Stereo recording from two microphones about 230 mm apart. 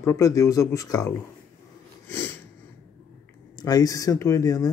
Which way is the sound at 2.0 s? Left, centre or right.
Centre.